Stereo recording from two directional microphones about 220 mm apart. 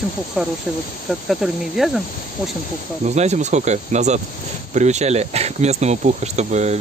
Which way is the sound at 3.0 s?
30° right (ahead or behind).